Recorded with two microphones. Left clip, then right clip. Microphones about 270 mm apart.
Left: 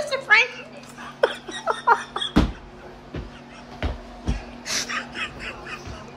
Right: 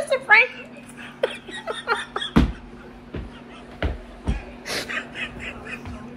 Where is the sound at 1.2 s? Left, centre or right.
Centre.